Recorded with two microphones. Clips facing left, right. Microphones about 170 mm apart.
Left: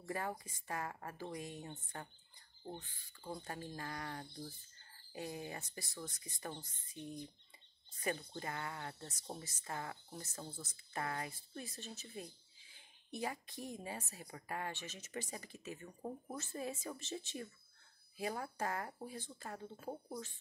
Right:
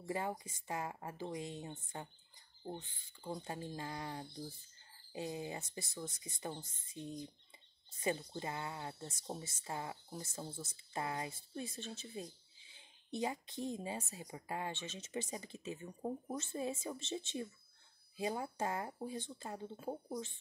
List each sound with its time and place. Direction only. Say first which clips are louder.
0.0 s speech: right 2 dB; 20° right (ahead or behind)